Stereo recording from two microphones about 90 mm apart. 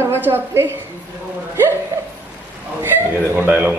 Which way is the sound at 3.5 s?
15° right (ahead or behind).